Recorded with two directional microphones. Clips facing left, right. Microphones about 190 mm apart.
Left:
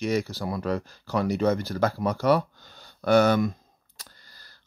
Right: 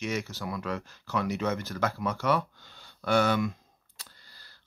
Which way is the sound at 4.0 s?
45° left (ahead or behind).